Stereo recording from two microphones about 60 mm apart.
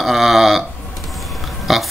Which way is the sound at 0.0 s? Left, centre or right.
Centre.